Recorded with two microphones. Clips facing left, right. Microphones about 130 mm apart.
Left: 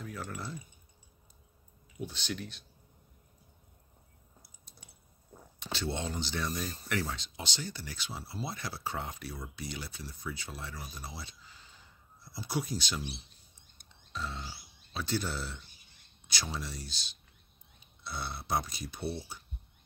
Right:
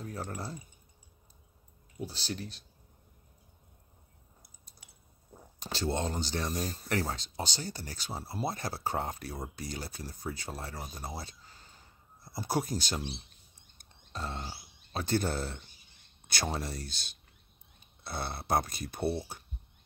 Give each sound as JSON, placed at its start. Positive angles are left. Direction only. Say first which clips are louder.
{"t": 0.0, "sound": "speech", "louder": "right 2 dB", "side_deg": -40}
{"t": 2.0, "sound": "speech", "louder": "even", "side_deg": -35}
{"t": 5.6, "sound": "speech", "louder": "right 3 dB", "side_deg": -40}